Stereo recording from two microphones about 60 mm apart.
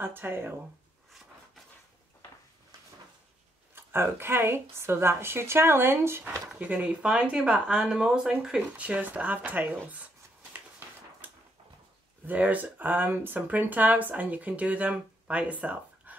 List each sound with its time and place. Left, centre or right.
0.0 s speech: right
3.7 s a woman's voice: right
6.6 s speech: right; by 8.3 s centre
8.7 s speech: right
12.3 s speech: right